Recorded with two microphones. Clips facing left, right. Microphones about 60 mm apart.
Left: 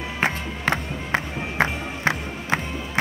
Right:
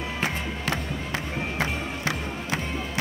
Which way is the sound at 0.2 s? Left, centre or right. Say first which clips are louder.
Left 7 dB; left.